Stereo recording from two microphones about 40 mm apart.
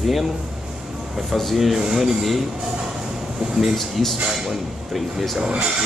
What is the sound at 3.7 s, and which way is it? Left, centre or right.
Speech, centre.